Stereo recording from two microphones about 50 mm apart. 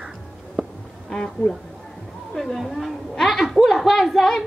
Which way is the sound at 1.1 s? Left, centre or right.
Centre.